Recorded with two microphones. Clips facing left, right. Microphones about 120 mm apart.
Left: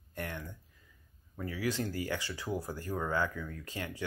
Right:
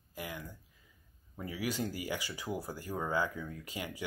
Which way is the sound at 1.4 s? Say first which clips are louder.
Left 2 dB; 15° right (ahead or behind).